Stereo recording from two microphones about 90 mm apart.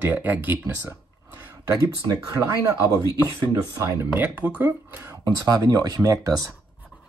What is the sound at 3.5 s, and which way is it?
Speech, 45° right (ahead or behind).